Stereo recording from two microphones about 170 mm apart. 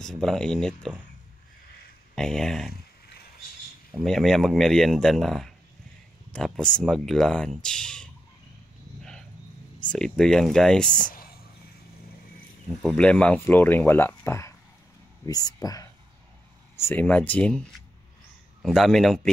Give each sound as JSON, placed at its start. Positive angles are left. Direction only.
{"t": 0.0, "sound": "speech", "side_deg": 0}
{"t": 2.1, "sound": "speech", "side_deg": 5}
{"t": 4.0, "sound": "speech", "side_deg": 0}
{"t": 9.9, "sound": "speech", "side_deg": 5}
{"t": 11.1, "sound": "a sound", "side_deg": 60}
{"t": 12.8, "sound": "speech", "side_deg": 5}
{"t": 18.6, "sound": "speech", "side_deg": 0}